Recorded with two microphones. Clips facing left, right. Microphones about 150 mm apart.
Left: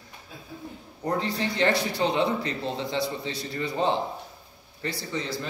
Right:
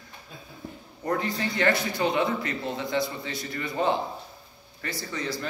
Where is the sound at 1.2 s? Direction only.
25° left (ahead or behind).